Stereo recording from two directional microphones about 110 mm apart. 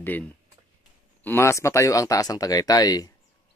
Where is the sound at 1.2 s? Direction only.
20° left (ahead or behind).